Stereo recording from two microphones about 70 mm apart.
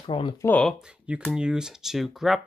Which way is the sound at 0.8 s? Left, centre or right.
Centre.